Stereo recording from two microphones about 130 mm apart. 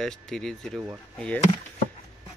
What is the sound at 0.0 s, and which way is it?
Speech, 5° left (ahead or behind).